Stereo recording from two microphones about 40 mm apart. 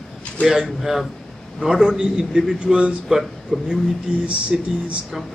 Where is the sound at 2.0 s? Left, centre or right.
Centre.